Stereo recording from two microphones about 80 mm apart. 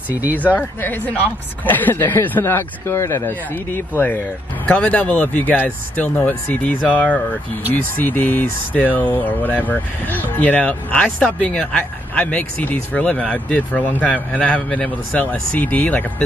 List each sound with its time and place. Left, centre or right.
0.2 s speech: right
0.5 s speech: left
4.6 s speech: centre